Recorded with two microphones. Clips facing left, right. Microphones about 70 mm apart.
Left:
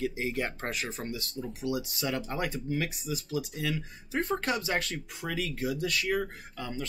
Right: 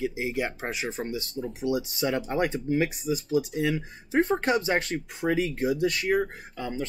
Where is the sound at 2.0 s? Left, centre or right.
Right.